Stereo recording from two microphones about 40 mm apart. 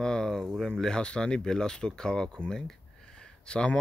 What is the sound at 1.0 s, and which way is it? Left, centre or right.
Speech, left.